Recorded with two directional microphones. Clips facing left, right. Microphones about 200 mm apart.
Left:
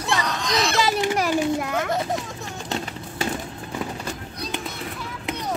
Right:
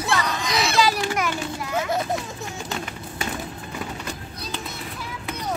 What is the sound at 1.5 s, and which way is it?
Children playing, 55° left (ahead or behind).